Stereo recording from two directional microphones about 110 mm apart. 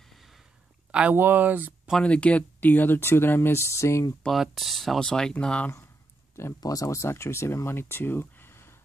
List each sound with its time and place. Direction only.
0.1 s sigh: centre (ahead or behind)
1.1 s speech: 20° right (ahead or behind)
1.9 s speech: 10° left (ahead or behind); by 4.1 s 25° left (ahead or behind)
4.2 s speech: centre (ahead or behind)
6.6 s speech: 35° left (ahead or behind)